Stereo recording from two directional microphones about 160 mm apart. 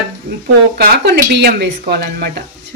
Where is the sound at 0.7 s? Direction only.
90° right.